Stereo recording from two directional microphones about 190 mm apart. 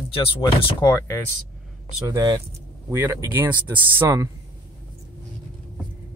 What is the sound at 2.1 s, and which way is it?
Speech, 20° right (ahead or behind).